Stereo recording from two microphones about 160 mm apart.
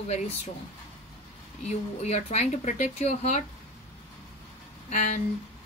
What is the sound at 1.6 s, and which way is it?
Speech, 45° left (ahead or behind).